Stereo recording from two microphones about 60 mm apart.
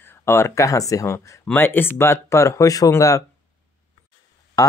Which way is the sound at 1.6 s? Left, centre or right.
Left.